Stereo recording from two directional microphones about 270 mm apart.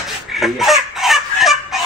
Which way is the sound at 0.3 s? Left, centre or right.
Centre.